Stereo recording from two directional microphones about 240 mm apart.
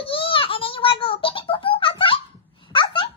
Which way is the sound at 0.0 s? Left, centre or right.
Left.